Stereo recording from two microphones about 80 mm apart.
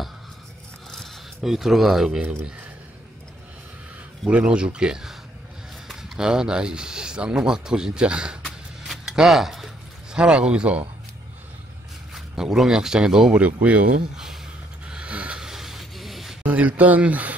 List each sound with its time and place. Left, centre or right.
0.9 s speech: centre
4.3 s speech: centre
8.5 s a sound: centre
10.1 s speech: centre
12.1 s speech: centre
14.9 s a sound: centre
16.4 s speech: centre